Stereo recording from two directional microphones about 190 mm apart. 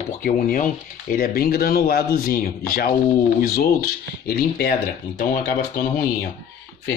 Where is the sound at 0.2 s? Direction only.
45° left (ahead or behind).